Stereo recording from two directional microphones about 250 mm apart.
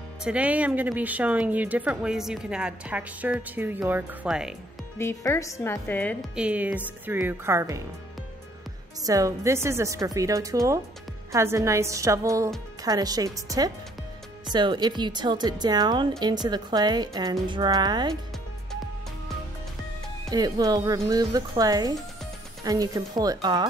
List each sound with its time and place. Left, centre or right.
0.2 s speech: centre
4.9 s speech: centre
6.3 s speech: centre
9.0 s speech: centre
20.2 s speech: centre